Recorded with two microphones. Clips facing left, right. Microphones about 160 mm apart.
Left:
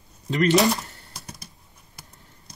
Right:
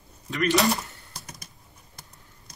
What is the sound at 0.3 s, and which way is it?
Speech, 25° left (ahead or behind).